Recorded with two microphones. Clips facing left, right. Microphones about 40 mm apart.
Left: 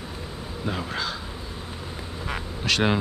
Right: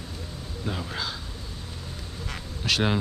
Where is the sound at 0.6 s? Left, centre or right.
Centre.